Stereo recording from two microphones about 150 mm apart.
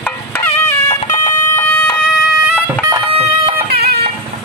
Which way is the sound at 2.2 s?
Centre (ahead or behind).